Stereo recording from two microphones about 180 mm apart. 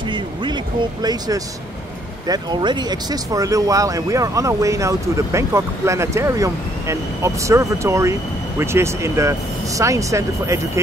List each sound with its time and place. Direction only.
2.2 s speech: 20° right (ahead or behind)